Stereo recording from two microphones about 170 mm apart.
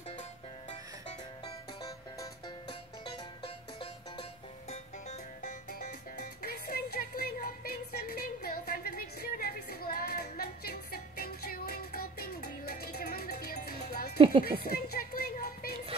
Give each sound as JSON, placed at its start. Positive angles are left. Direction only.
{"t": 1.4, "sound": "music", "side_deg": 25}
{"t": 6.4, "sound": "music", "side_deg": 65}